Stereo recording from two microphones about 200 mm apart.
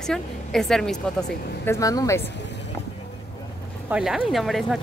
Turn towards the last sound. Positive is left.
turn(degrees=0)  # may be behind; listen again after turning